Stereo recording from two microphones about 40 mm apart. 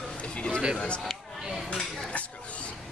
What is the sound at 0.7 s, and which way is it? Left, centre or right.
Speech, left.